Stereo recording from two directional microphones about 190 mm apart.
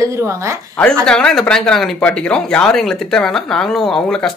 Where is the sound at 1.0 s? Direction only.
5° left (ahead or behind).